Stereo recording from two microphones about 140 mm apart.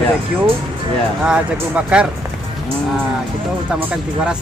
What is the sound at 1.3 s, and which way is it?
Speech, 10° right (ahead or behind).